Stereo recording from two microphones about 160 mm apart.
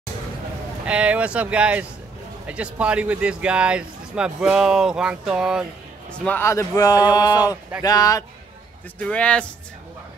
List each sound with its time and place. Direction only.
0.8 s speech: 10° right (ahead or behind)
6.2 s speech: 15° left (ahead or behind)
9.0 s speech: 5° left (ahead or behind)